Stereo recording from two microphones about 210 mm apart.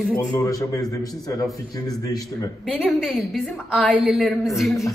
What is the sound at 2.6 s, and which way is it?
A woman's voice, centre (ahead or behind).